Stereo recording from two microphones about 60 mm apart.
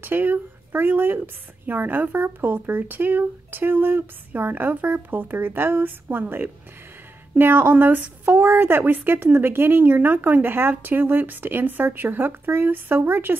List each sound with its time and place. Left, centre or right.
0.0 s speech: right